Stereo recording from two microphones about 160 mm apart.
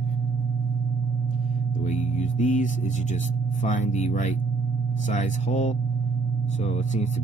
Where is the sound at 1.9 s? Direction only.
50° left (ahead or behind).